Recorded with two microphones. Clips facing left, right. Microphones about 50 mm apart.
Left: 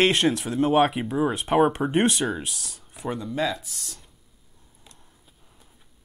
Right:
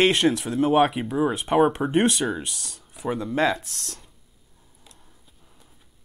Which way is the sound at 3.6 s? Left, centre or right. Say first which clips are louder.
Right 2 dB; right.